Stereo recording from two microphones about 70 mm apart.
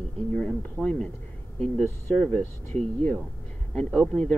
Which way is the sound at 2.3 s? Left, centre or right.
Left.